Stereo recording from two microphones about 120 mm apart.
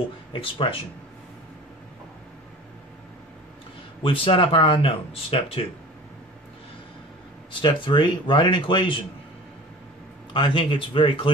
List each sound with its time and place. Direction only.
0.3 s speech: 45° left (ahead or behind)
4.0 s speech: 45° left (ahead or behind)
7.6 s speech: 40° left (ahead or behind)
10.3 s speech: 45° left (ahead or behind)